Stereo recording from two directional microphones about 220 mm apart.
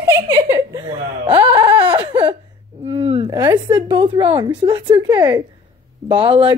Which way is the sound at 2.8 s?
25° right (ahead or behind).